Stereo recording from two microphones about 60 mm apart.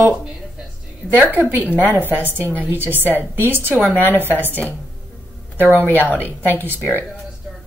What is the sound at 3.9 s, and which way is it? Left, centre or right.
Speech, left.